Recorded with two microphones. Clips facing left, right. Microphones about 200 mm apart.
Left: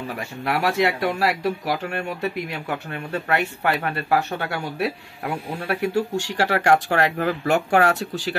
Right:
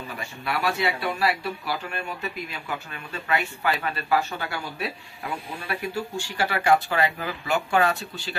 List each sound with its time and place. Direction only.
0.2 s speech: 80° left